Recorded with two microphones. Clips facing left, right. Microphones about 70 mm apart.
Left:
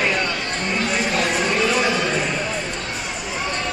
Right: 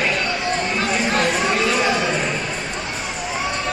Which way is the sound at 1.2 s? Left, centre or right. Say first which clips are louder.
Right 1 dB; centre.